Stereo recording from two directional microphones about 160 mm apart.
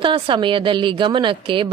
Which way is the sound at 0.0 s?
30° right (ahead or behind).